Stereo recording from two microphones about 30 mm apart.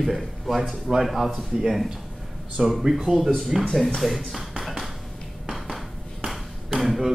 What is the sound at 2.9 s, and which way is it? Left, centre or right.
A man's voice, centre.